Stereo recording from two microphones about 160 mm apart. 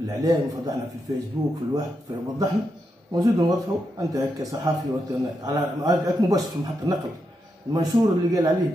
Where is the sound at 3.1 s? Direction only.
25° right (ahead or behind).